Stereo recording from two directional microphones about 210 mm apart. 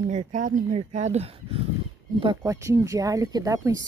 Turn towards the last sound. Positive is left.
turn(degrees=-15)  # may be behind; listen again after turning